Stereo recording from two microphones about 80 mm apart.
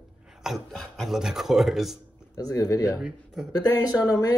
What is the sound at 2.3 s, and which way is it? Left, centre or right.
Speech, left.